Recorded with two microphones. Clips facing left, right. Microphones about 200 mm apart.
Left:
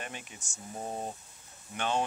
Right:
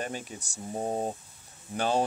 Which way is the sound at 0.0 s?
35° right (ahead or behind).